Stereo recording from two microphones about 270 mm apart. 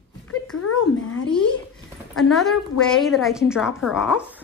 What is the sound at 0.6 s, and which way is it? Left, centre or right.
Speech, left.